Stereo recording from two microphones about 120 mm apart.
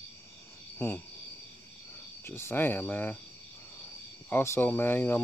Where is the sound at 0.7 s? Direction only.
25° left (ahead or behind).